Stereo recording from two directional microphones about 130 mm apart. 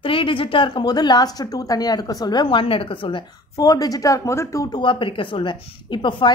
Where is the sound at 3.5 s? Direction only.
30° left (ahead or behind).